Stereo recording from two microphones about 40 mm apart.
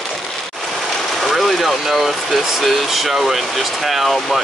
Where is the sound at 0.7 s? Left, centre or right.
Centre.